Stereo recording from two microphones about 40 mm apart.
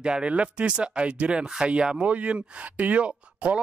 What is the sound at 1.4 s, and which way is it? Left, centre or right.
Speech, centre.